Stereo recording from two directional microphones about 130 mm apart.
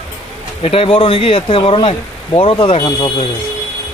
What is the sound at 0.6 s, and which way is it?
Speech, 50° left (ahead or behind).